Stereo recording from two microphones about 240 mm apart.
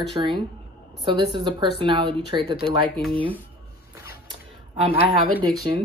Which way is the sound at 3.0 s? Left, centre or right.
Centre.